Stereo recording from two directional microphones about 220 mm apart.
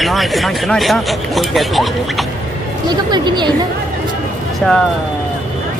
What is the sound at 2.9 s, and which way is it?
Speech, 20° right (ahead or behind).